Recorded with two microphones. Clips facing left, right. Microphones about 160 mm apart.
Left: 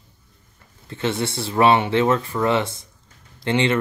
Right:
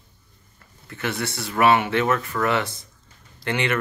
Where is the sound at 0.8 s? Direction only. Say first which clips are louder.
Left 4 dB; 25° left (ahead or behind).